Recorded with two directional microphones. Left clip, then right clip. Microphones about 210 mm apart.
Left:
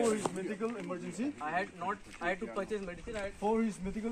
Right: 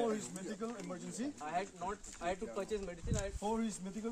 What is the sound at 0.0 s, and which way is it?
Speech, 15° right (ahead or behind).